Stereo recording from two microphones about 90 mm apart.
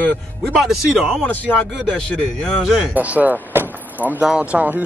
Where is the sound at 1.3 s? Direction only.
15° left (ahead or behind).